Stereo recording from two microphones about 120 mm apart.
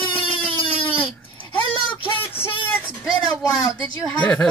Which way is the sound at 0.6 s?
45° left (ahead or behind).